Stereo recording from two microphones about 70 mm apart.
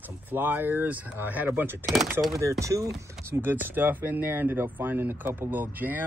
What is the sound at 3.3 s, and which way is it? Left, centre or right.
Speech, right.